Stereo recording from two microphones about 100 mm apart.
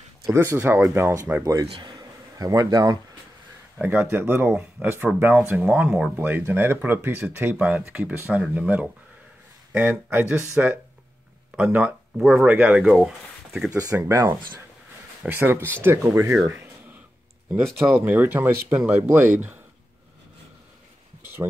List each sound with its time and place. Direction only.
0.3 s speech: 25° right (ahead or behind)
1.4 s speech: 35° right (ahead or behind)
1.7 s a sound: 55° right (ahead or behind)
2.4 s speech: 40° right (ahead or behind)
3.8 s speech: 20° right (ahead or behind)
5.6 s speech: 10° right (ahead or behind)
6.1 s speech: 20° right (ahead or behind)
12.9 s speech: 5° right (ahead or behind)
13.7 s speech: 35° right (ahead or behind)
17.5 s speech: 25° right (ahead or behind)